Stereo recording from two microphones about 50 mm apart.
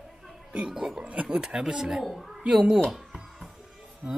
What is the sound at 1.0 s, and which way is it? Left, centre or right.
Speech, right.